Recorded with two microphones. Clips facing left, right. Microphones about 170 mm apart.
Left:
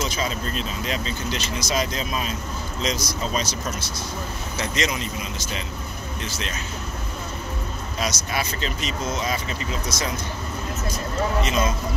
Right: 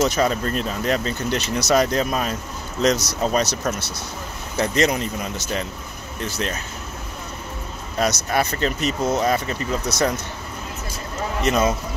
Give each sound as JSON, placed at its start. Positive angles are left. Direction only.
{"t": 0.0, "sound": "speech", "side_deg": -65}
{"t": 8.0, "sound": "speech", "side_deg": -55}
{"t": 11.4, "sound": "speech", "side_deg": -65}